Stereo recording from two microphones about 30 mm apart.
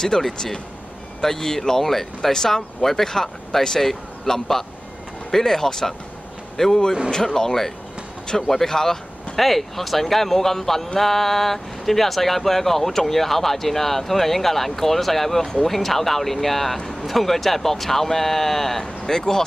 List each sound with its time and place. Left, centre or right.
0.0 s speech: centre